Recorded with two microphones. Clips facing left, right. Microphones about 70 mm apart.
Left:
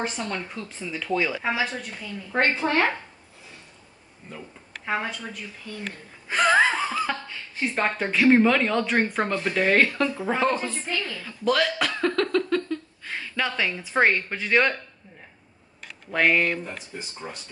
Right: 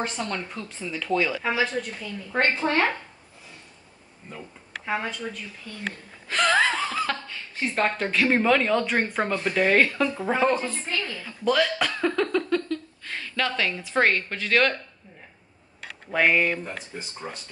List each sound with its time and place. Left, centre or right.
0.0 s speech: centre
4.8 s speech: centre
10.6 s a woman's voice: centre
11.4 s a sound: centre
12.6 s a woman's voice: centre
16.1 s speech: centre
16.7 s speech: right